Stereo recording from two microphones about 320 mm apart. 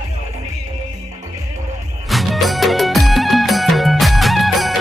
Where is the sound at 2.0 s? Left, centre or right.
Centre.